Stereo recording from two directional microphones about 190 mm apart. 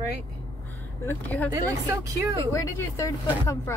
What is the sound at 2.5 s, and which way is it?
Speech, 15° left (ahead or behind).